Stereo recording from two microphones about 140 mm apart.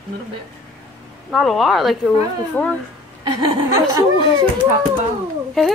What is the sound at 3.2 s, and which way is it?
Speech, 30° right (ahead or behind).